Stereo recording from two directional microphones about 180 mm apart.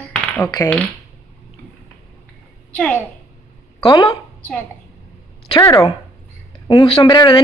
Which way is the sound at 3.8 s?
25° left (ahead or behind).